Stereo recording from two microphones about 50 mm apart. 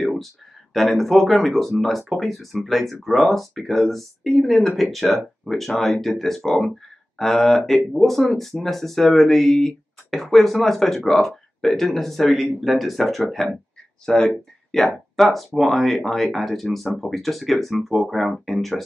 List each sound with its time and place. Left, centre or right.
0.0 s a sound: centre
0.7 s speech: centre
14.0 s speech: centre
14.3 s speech: centre